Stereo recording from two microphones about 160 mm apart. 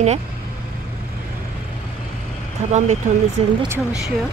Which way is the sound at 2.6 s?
45° right (ahead or behind).